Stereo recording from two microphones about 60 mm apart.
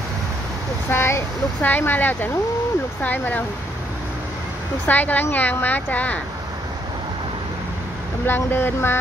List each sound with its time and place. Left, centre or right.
0.8 s speech: left
1.6 s speech: left
4.8 s speech: left
8.3 s speech: left